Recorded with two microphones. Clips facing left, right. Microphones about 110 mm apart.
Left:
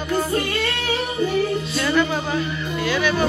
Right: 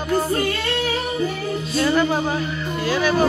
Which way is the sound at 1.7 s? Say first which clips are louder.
Right 4 dB; 35° right (ahead or behind).